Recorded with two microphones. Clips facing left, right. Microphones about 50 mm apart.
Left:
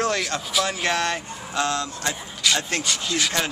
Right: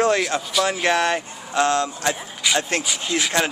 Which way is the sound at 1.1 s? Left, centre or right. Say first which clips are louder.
Right 4 dB; right.